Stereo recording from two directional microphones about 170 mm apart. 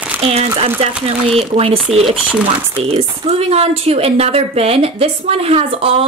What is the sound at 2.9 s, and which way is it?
Speech, 35° right (ahead or behind).